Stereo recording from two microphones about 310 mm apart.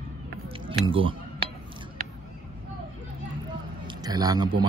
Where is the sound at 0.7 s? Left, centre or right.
Centre.